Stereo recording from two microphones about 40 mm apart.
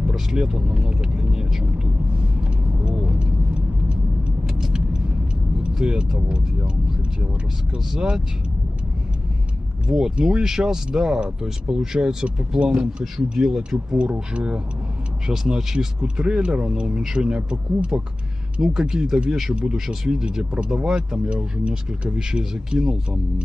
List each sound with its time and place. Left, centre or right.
0.1 s speech: centre
2.4 s vehicle: right
5.8 s speech: right
7.9 s speech: centre
9.8 s speech: centre
14.3 s speech: right
15.2 s speech: centre
19.5 s speech: right